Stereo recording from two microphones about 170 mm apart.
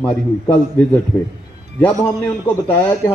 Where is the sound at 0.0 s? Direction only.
10° left (ahead or behind).